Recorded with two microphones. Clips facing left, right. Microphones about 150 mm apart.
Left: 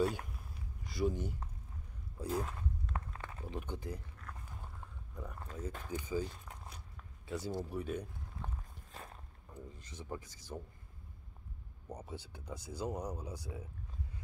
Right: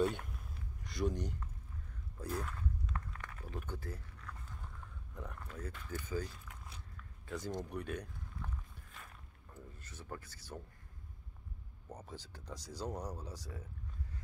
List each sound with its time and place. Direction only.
0.0 s a sound: centre (ahead or behind)
2.2 s a sound: 20° left (ahead or behind)
5.1 s speech: centre (ahead or behind)
5.9 s speech: 15° left (ahead or behind)
6.4 s walk: 35° left (ahead or behind)
7.2 s speech: 10° left (ahead or behind)
8.4 s walk: 20° left (ahead or behind)
8.9 s a sound: 35° left (ahead or behind)
9.5 s speech: 15° left (ahead or behind)
11.9 s speech: 10° left (ahead or behind)